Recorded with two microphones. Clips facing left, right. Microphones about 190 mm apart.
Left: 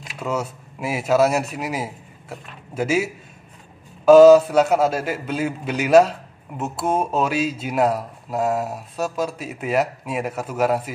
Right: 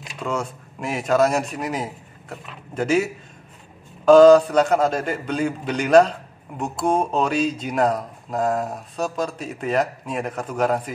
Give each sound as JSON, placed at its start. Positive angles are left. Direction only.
{"t": 0.0, "sound": "a man's voice", "side_deg": 5}